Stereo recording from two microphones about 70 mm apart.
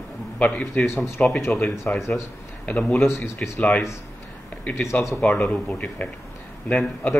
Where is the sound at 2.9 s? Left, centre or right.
Left.